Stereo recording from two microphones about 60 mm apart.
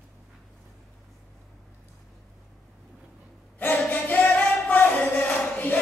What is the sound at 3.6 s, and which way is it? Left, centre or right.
Singing, left.